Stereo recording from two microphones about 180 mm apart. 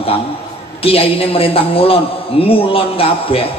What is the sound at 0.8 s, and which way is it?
A man's voice, 30° left (ahead or behind).